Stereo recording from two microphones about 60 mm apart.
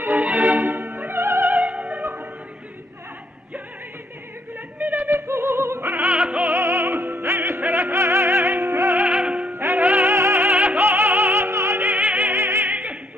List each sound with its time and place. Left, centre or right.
0.1 s music: right
1.1 s music: right
1.5 s opera: right
4.7 s a sound: right
5.1 s opera: right
6.0 s music: centre
6.5 s music: right
8.9 s music: centre
9.5 s music: right
10.1 s music: right
10.4 s music: right
10.9 s music: right
11.9 s music: right
12.4 s opera: right